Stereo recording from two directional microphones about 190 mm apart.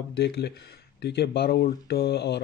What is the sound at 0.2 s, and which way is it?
Speech, 60° left (ahead or behind).